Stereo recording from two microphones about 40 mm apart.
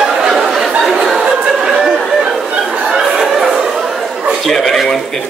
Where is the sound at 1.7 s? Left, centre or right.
Right.